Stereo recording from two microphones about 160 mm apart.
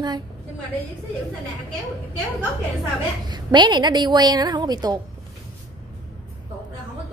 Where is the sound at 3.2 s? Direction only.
30° right (ahead or behind).